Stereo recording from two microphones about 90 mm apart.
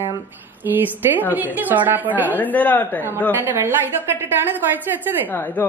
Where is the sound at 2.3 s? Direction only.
20° left (ahead or behind).